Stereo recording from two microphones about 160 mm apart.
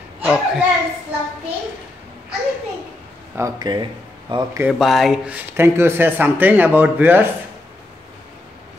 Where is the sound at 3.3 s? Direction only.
20° right (ahead or behind).